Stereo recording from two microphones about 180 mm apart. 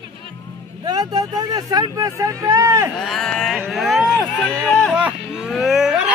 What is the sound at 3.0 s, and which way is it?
Speech, centre (ahead or behind).